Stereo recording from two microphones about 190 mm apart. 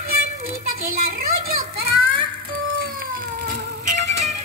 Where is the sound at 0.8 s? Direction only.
50° right (ahead or behind).